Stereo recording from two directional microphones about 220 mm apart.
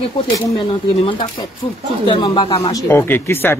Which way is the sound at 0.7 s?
25° left (ahead or behind).